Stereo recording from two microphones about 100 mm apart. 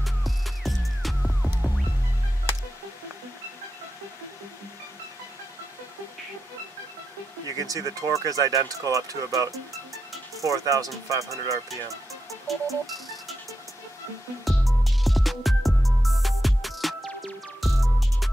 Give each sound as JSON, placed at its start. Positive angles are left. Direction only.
{"t": 0.0, "sound": "music", "side_deg": 0}
{"t": 7.5, "sound": "speech", "side_deg": -35}
{"t": 11.7, "sound": "music", "side_deg": 0}
{"t": 14.4, "sound": "music", "side_deg": 0}